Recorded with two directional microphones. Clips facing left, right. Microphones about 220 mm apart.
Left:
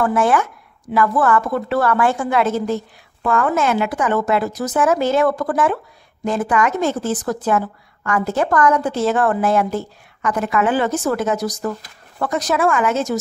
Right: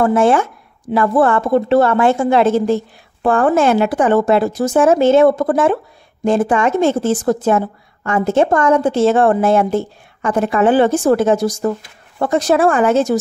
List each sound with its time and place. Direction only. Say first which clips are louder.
0.0 s speech: right 4 dB; 25° right (ahead or behind)